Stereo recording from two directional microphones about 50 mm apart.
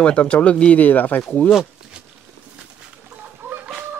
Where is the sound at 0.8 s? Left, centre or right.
Left.